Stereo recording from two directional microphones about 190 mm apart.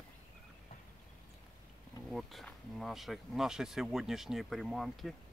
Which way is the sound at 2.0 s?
Centre (ahead or behind).